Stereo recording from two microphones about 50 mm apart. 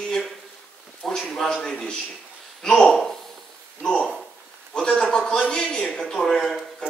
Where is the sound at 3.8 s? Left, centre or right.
Centre.